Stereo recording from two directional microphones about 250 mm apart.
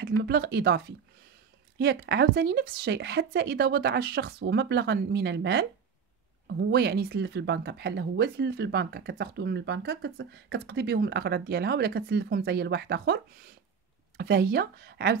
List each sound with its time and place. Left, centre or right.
0.2 s speech: right